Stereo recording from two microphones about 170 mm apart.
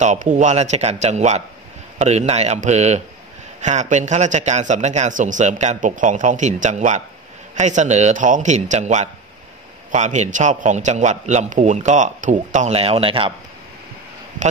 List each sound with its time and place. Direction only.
0.0 s a man's voice: 45° right (ahead or behind)